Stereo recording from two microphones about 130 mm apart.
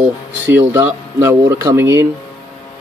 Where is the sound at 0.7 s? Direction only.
25° right (ahead or behind).